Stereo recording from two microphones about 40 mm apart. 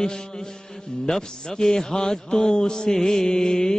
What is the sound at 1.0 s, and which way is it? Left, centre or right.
A man's voice, centre.